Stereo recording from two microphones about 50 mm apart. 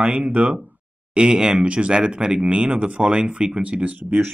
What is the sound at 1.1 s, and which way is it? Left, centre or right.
Speech, centre.